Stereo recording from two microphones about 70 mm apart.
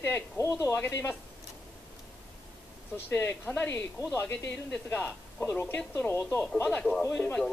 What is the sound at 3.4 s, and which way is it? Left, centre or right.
Speech, left.